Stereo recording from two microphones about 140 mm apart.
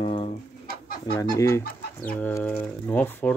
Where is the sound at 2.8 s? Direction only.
10° left (ahead or behind).